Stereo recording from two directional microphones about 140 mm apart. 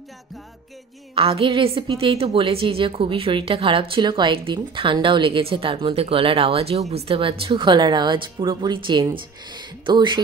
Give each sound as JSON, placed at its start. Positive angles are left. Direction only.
{"t": 1.1, "sound": "a woman's voice", "side_deg": -40}